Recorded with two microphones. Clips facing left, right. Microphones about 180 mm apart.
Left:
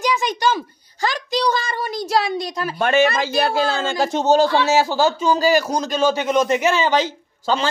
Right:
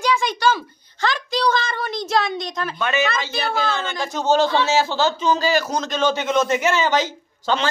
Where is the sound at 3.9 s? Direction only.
35° left (ahead or behind).